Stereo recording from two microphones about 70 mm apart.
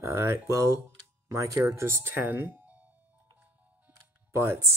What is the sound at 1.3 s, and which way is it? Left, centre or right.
Speech, right.